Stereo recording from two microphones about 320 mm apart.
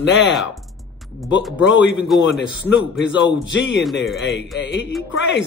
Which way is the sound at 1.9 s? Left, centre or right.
Centre.